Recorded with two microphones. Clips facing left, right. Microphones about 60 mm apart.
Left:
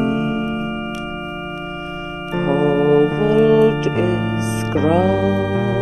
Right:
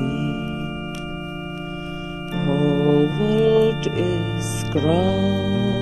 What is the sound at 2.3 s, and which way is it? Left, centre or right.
Music, left.